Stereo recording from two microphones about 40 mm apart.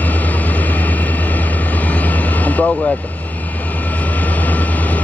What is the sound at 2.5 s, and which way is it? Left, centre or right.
Vehicle, left.